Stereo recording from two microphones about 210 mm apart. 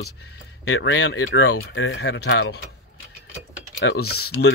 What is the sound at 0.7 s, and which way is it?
Speech, 60° left (ahead or behind).